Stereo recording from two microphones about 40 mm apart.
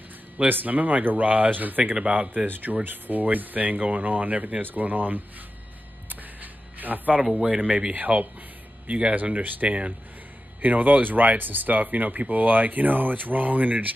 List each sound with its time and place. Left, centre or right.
0.5 s speech: right
6.0 s a sound: right
7.4 s speech: right
9.1 s speech: right
9.7 s speech: right
10.6 s speech: right